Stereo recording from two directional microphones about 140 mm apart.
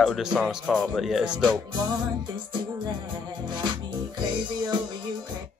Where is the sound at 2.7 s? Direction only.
30° right (ahead or behind).